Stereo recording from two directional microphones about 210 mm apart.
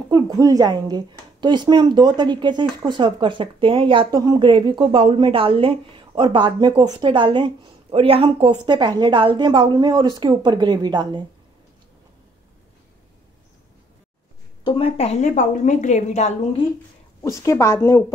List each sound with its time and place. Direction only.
0.1 s speech: 15° right (ahead or behind)
14.6 s a woman's voice: 25° left (ahead or behind)
17.2 s speech: 15° left (ahead or behind)